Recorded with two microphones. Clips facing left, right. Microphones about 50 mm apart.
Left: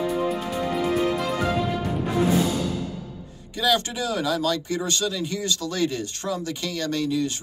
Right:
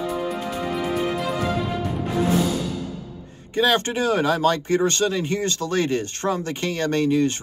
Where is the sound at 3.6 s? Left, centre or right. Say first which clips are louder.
Right 3 dB; right.